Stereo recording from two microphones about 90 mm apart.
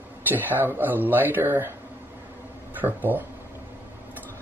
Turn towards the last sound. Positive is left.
turn(degrees=-20)  # may be behind; listen again after turning